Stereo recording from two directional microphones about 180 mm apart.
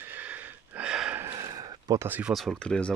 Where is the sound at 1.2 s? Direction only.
20° right (ahead or behind); by 2.9 s 5° left (ahead or behind).